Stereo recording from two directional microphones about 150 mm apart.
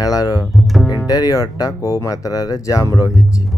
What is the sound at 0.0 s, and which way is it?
Speech, 25° left (ahead or behind).